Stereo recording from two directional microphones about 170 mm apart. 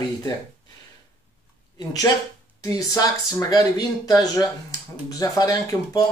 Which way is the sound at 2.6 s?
20° left (ahead or behind).